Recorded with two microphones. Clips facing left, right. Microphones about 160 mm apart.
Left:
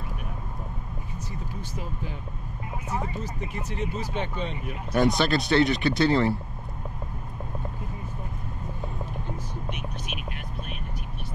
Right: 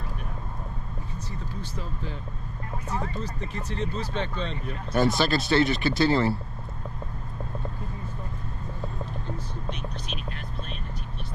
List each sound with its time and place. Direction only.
2.9 s speech: 10° left (ahead or behind)
9.7 s vehicle: 10° left (ahead or behind)